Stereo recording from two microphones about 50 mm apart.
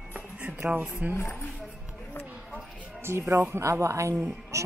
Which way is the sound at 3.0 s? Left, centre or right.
Right.